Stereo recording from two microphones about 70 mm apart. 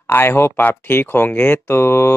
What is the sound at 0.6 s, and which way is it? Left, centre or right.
Speech, left.